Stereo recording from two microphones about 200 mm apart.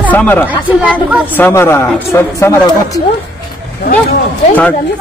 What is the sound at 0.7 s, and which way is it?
Speech, 5° right (ahead or behind).